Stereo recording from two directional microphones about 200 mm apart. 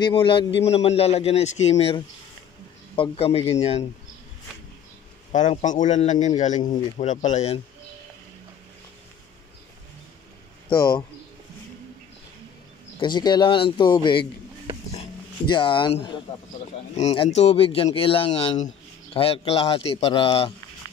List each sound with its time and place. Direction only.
0.0 s a man's voice: 25° left (ahead or behind)
5.3 s a man's voice: 35° left (ahead or behind)
13.0 s speech: 20° left (ahead or behind)
15.5 s speech: 25° left (ahead or behind)